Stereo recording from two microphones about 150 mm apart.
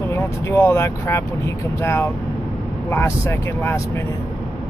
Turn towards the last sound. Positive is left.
turn(degrees=15)  # may be behind; listen again after turning